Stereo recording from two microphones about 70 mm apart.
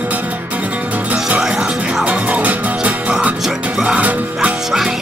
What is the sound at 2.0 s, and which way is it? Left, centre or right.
Music, centre.